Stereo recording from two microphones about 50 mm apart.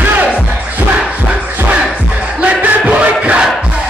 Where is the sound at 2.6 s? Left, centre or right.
Right.